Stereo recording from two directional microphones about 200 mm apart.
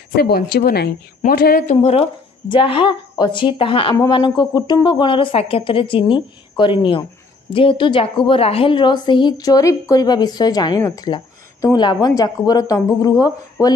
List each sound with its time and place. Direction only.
0.1 s speech: 55° left (ahead or behind)
1.8 s a woman's voice: 30° left (ahead or behind)